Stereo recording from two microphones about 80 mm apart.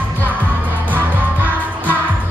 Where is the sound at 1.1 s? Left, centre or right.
Right.